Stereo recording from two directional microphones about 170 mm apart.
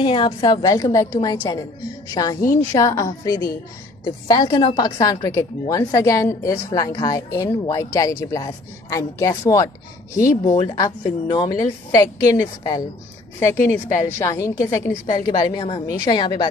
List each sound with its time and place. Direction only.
0.0 s a woman's voice: 30° left (ahead or behind)
10.5 s a woman's voice: 35° left (ahead or behind)
10.8 s a woman's voice: 25° left (ahead or behind)